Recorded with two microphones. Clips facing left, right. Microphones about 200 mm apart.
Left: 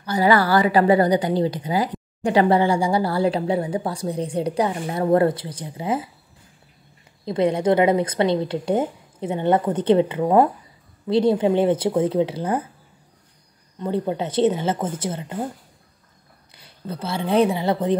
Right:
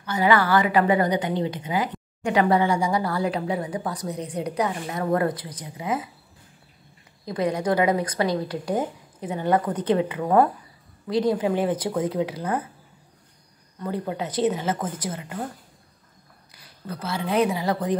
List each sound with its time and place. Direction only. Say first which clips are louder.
0.0 s a woman's voice: left 3 dB; 35° left (ahead or behind)
7.2 s speech: left 5 dB; 25° left (ahead or behind)
13.7 s speech: left 5 dB; 25° left (ahead or behind)
16.5 s speech: left 3 dB; 25° left (ahead or behind)